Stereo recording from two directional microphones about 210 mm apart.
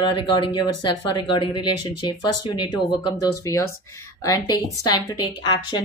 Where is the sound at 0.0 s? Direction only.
25° left (ahead or behind).